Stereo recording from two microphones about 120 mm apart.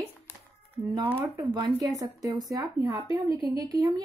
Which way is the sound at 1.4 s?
35° right (ahead or behind).